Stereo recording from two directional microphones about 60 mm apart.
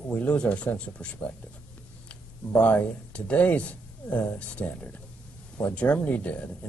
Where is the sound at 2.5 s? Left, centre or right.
Centre.